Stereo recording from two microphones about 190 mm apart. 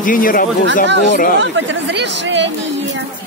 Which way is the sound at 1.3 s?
70° right (ahead or behind).